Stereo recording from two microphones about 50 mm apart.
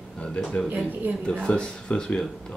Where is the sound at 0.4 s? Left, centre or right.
Centre.